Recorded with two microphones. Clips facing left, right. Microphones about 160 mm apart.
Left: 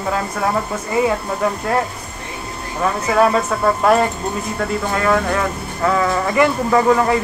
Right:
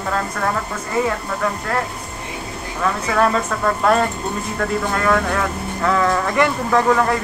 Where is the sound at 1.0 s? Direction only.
20° left (ahead or behind).